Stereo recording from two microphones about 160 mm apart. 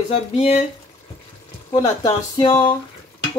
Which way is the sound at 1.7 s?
25° left (ahead or behind).